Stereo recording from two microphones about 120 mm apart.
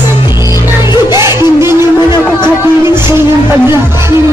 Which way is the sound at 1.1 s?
25° right (ahead or behind).